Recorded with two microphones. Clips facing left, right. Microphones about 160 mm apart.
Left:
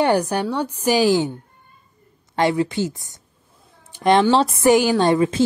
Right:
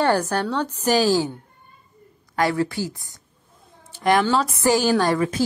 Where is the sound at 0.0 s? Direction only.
15° left (ahead or behind).